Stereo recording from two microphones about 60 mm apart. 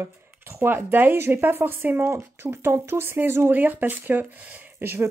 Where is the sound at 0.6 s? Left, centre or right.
Right.